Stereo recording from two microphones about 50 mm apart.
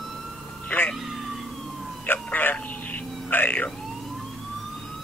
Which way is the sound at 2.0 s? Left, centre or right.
Left.